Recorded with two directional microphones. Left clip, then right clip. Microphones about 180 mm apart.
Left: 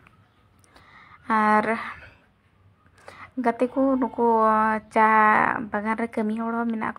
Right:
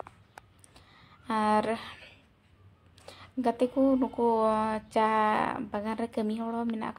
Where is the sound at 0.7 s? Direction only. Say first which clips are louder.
Left 7 dB; 20° left (ahead or behind).